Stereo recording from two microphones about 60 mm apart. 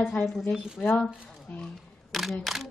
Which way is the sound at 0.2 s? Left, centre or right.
Centre.